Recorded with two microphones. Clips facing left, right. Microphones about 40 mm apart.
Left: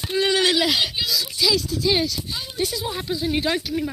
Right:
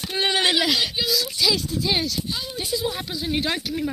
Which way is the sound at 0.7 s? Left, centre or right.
Centre.